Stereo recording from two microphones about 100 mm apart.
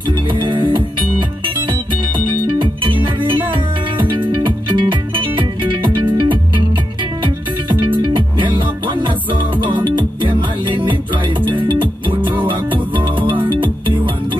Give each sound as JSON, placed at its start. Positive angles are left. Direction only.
{"t": 0.3, "sound": "music", "side_deg": -55}